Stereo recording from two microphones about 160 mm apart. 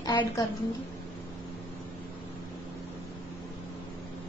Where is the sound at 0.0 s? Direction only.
25° left (ahead or behind).